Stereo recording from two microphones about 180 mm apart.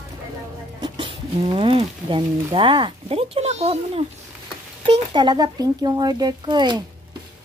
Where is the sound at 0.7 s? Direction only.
25° right (ahead or behind).